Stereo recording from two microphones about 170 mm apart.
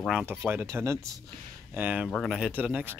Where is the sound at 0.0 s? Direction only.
Centre (ahead or behind).